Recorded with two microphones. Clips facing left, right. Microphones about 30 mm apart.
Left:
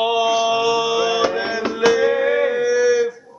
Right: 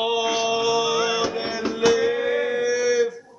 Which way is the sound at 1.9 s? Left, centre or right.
Centre.